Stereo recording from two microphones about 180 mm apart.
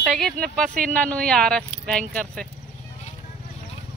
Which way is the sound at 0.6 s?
50° right (ahead or behind).